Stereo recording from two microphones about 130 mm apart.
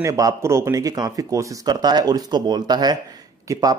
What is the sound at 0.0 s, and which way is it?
Speech, 25° right (ahead or behind).